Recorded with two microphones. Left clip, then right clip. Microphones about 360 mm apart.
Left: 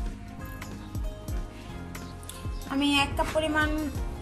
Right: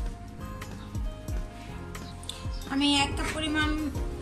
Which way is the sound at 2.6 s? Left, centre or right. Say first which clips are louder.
Even; centre.